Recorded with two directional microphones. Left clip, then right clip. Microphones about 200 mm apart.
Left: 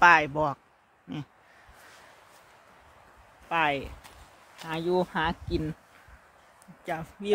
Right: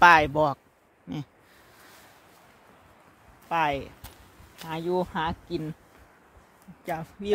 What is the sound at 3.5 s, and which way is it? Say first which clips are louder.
Speech: right 1 dB; 25° right (ahead or behind).